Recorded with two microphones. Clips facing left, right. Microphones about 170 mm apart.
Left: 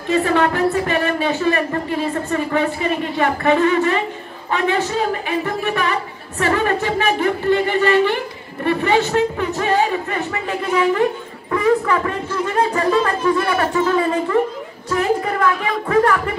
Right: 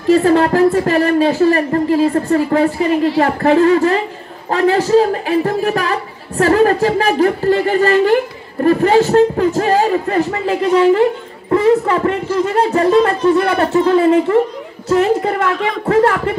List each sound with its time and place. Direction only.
0.1 s a woman's voice: 35° right (ahead or behind)